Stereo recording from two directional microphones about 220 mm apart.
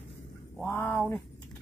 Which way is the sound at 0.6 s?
5° left (ahead or behind).